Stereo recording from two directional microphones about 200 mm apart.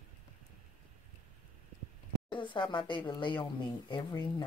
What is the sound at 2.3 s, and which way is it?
Speech, 25° left (ahead or behind).